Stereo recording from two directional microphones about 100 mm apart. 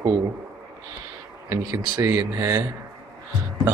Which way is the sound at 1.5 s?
35° right (ahead or behind).